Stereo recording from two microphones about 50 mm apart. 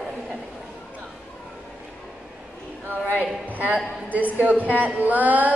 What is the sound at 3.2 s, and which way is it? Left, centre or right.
Speech, right.